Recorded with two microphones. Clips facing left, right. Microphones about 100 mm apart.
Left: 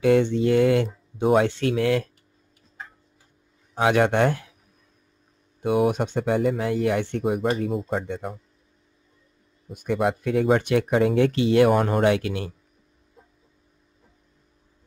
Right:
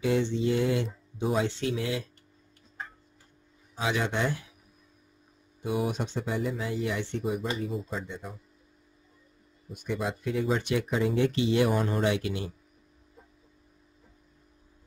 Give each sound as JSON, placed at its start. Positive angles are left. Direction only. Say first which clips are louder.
{"t": 0.0, "sound": "speech", "louder": "left 7 dB", "side_deg": 60}
{"t": 3.7, "sound": "speech", "louder": "left 10 dB", "side_deg": 60}
{"t": 5.6, "sound": "speech", "louder": "left 8 dB", "side_deg": 65}
{"t": 9.7, "sound": "speech", "louder": "left 8 dB", "side_deg": 60}